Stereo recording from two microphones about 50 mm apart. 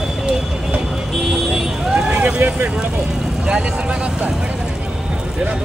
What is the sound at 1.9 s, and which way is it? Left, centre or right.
Vehicle, right.